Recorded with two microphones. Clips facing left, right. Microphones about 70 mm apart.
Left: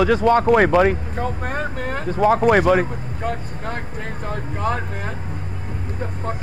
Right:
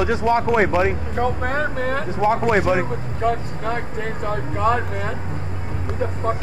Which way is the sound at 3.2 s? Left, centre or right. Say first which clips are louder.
Right 5 dB; centre.